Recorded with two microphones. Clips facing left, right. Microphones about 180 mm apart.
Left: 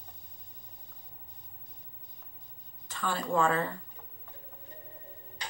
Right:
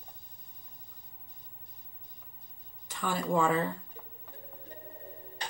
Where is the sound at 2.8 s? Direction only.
15° right (ahead or behind).